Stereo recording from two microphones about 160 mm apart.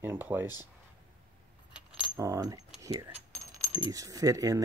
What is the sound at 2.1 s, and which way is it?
Keys jangling, 20° right (ahead or behind).